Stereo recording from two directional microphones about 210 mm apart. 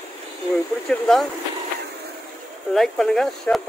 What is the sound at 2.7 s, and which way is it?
Speech, centre (ahead or behind).